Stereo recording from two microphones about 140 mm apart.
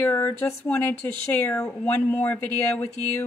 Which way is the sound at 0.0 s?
20° left (ahead or behind).